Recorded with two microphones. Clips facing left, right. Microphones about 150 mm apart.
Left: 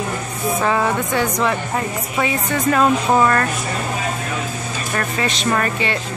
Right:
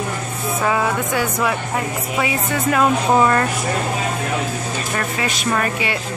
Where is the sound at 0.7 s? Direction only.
5° right (ahead or behind).